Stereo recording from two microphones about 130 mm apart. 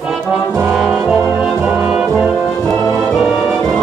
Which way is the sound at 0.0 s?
5° right (ahead or behind).